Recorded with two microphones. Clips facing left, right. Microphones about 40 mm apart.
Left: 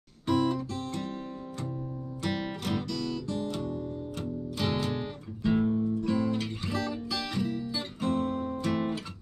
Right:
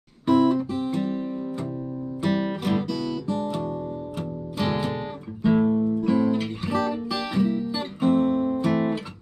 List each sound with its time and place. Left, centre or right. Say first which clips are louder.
0.3 s guitar: right 8 dB; centre
2.2 s music: right 7 dB; centre
5.7 s music: right 6 dB; right
5.9 s music: right 7 dB; centre